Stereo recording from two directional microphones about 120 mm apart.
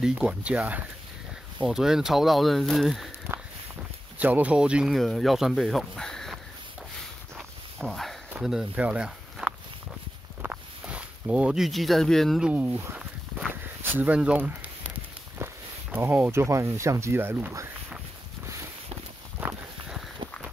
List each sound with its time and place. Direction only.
0.0 s speech: 5° right (ahead or behind)
3.3 s walk: 15° right (ahead or behind)
4.2 s speech: 10° right (ahead or behind); by 6.4 s 5° left (ahead or behind)
7.8 s speech: centre (ahead or behind)
10.4 s a sound: 10° right (ahead or behind)
12.4 s speech: 15° right (ahead or behind)
13.5 s a sound: 15° right (ahead or behind)
15.3 s speech: 20° right (ahead or behind)
19.4 s walk: 15° right (ahead or behind)